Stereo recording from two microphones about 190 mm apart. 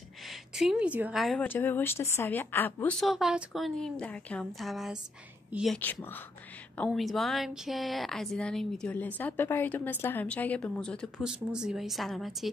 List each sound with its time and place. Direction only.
0.2 s a woman's voice: centre (ahead or behind)
5.8 s a woman's voice: 10° left (ahead or behind)